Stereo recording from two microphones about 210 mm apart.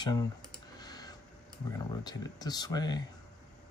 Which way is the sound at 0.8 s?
20° left (ahead or behind).